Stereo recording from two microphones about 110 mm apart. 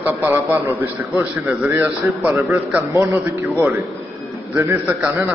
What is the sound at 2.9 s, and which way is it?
Speech, 25° right (ahead or behind).